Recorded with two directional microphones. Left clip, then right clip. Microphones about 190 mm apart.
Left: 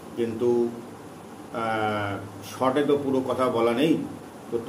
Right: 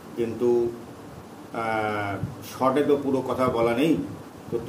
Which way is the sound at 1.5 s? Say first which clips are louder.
Even; 5° right (ahead or behind).